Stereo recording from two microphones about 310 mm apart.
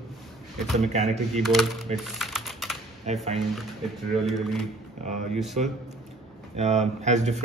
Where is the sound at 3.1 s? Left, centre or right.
Right.